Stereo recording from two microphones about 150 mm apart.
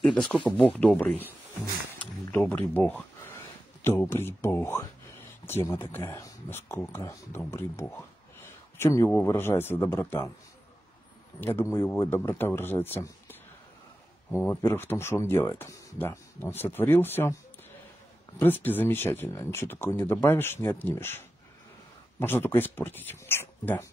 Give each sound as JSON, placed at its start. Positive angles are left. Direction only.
{"t": 0.0, "sound": "speech", "side_deg": 5}
{"t": 2.3, "sound": "speech", "side_deg": 15}
{"t": 11.4, "sound": "speech", "side_deg": 15}
{"t": 14.4, "sound": "speech", "side_deg": 15}
{"t": 18.4, "sound": "speech", "side_deg": 15}